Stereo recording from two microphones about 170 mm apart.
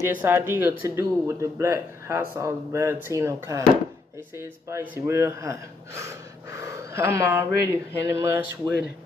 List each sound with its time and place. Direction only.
0.0 s speech: 15° right (ahead or behind)